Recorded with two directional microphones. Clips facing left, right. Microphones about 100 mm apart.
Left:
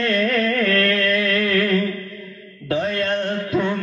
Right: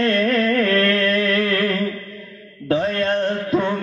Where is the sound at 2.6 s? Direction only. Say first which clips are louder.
Right 2 dB; 35° right (ahead or behind).